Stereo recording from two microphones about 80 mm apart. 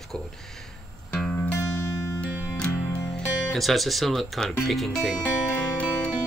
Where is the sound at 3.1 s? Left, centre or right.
Centre.